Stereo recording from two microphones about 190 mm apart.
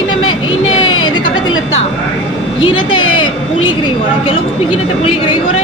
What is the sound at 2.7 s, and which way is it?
A woman's voice, 25° left (ahead or behind).